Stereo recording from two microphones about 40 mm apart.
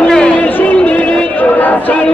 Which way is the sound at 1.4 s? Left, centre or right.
Left.